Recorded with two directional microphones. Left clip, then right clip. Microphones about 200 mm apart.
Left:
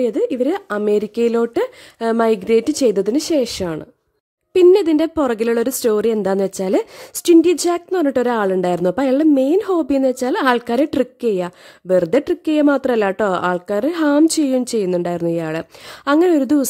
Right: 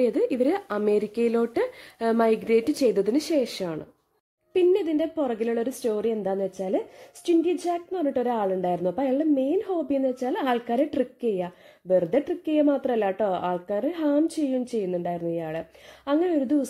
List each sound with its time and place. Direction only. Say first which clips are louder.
0.0 s a woman's voice: left 5 dB; 20° left (ahead or behind); by 16.6 s 40° left (ahead or behind)